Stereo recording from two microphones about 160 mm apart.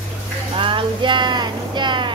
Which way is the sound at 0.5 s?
30° right (ahead or behind).